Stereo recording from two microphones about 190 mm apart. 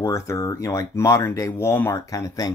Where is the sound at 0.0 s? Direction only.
15° left (ahead or behind).